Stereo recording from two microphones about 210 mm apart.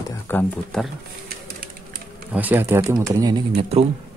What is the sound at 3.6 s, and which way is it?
Speech, 30° right (ahead or behind).